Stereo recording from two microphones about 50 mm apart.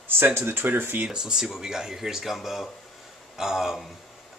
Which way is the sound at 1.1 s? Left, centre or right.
Centre.